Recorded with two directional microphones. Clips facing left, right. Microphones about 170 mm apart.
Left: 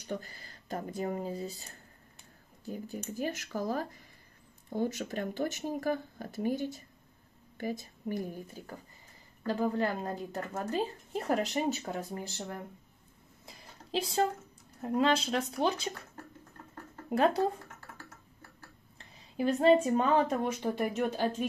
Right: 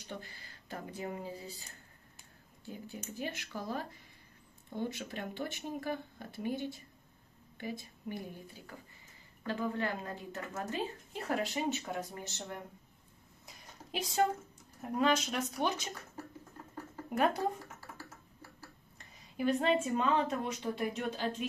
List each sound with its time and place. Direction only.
0.1 s speech: 45° left (ahead or behind)
9.5 s speech: 40° left (ahead or behind)
13.5 s a sound: 30° left (ahead or behind)
15.0 s speech: 30° left (ahead or behind)
17.1 s speech: 30° left (ahead or behind)
17.9 s tick-tock: 10° right (ahead or behind)
18.9 s speech: 30° left (ahead or behind); by 21.5 s 50° left (ahead or behind)